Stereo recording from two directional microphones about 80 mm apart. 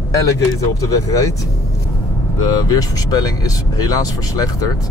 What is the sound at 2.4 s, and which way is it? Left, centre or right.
Speech, left.